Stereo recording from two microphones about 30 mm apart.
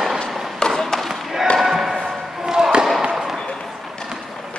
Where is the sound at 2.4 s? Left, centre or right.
Right.